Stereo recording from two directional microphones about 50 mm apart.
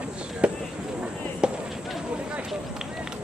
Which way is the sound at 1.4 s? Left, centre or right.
Centre.